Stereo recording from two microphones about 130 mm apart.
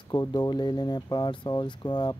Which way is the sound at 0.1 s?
30° left (ahead or behind).